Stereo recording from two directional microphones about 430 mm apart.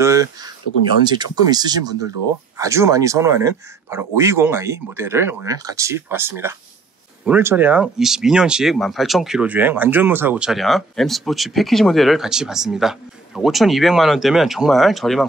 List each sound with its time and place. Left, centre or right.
0.0 s speech: centre